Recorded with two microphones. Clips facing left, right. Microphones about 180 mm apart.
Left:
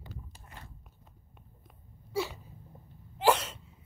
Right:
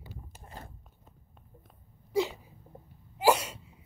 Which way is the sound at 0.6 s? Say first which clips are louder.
Right 5 dB; 40° right (ahead or behind).